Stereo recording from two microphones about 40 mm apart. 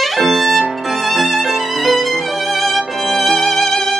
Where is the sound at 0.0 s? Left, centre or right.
Centre.